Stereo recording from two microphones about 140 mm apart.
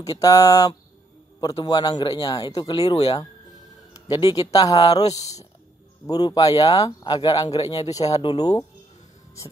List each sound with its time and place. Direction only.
0.0 s speech: 25° left (ahead or behind)
6.0 s speech: 30° left (ahead or behind)